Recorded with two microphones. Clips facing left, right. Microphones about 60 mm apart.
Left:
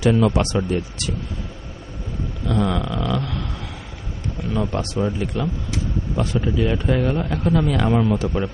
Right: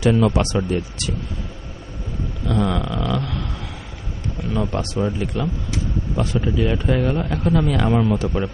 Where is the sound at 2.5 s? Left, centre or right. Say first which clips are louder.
Even; centre.